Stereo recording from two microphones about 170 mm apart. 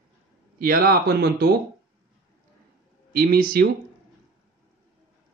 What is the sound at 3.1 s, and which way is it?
Speech, 60° right (ahead or behind).